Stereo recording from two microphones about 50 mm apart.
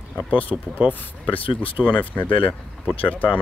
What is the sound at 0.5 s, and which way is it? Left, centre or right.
Speech, left.